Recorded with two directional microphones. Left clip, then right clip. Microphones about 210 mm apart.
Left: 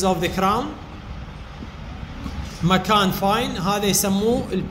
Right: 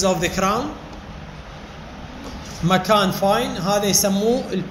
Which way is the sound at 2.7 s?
25° left (ahead or behind).